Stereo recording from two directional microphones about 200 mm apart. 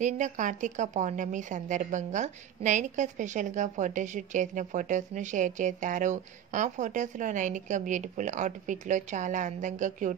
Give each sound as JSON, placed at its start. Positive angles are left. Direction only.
{"t": 0.0, "sound": "a woman's voice", "side_deg": -40}